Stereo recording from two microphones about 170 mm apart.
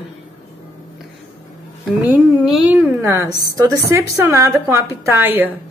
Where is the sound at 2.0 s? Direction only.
10° right (ahead or behind).